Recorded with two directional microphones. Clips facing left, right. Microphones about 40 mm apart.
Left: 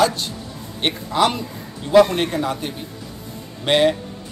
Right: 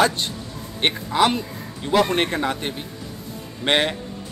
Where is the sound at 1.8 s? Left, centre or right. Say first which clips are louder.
Left 5 dB; right.